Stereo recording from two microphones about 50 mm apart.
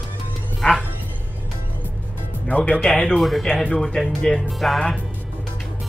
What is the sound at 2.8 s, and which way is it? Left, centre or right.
Speech, centre.